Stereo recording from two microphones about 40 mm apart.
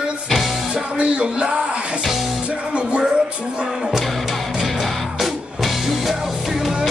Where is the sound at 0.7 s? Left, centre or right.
Right.